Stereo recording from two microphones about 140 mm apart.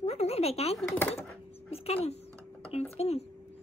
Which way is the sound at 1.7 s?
45° left (ahead or behind).